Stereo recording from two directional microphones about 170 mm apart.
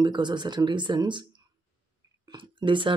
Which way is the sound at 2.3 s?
30° right (ahead or behind).